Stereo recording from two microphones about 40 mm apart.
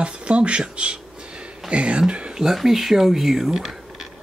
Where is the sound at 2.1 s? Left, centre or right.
Right.